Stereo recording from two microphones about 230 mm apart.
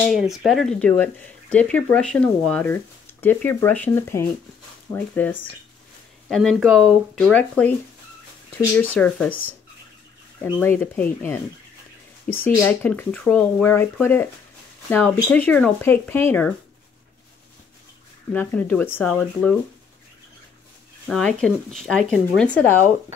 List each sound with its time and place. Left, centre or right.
0.1 s speech: centre
8.9 s speech: centre
10.4 s speech: centre
12.4 s speech: centre
18.3 s speech: centre
21.1 s speech: centre